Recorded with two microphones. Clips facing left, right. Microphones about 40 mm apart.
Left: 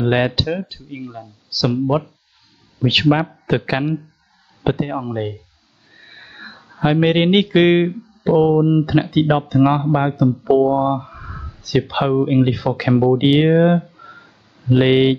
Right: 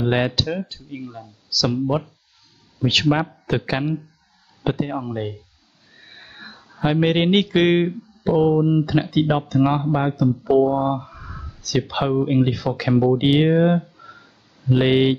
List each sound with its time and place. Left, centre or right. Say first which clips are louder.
0.0 s speech: left 3 dB; centre